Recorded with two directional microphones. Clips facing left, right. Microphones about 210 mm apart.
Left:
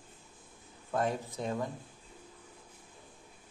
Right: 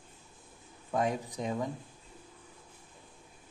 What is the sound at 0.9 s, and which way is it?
Speech, 15° right (ahead or behind).